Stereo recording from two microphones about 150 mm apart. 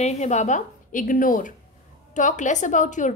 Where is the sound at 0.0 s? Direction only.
50° left (ahead or behind).